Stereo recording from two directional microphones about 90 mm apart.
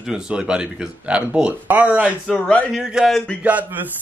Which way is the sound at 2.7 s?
5° right (ahead or behind).